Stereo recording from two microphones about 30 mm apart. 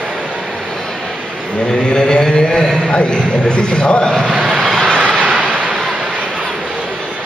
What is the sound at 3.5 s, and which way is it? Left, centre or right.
Speech, left.